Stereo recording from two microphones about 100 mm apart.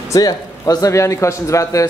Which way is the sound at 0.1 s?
40° left (ahead or behind).